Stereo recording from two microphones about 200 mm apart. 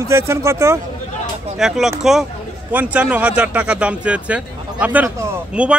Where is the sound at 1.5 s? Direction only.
Centre (ahead or behind).